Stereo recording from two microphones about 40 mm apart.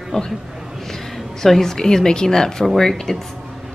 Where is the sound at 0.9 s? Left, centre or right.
Centre.